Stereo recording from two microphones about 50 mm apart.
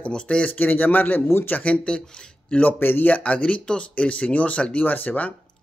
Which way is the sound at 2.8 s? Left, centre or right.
Left.